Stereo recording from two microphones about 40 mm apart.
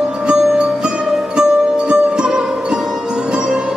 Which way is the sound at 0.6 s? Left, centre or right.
Right.